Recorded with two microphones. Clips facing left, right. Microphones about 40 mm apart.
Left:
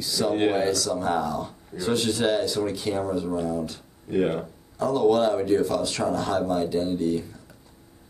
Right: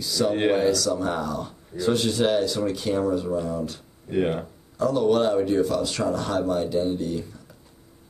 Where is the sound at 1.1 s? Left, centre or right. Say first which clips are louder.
Left 2 dB; left.